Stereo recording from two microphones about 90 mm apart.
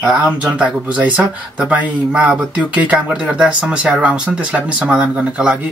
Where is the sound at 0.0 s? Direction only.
10° right (ahead or behind).